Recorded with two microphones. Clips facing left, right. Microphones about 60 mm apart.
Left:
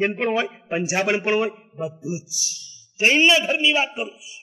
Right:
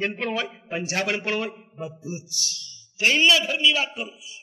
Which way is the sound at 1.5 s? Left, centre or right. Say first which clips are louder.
Left 5 dB; centre.